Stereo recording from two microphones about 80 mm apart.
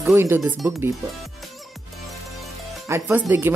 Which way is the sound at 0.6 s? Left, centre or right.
Right.